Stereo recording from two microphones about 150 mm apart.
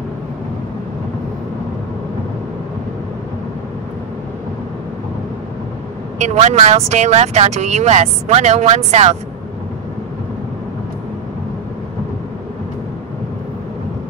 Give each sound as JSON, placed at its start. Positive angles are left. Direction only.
{"t": 6.1, "sound": "speech", "side_deg": -50}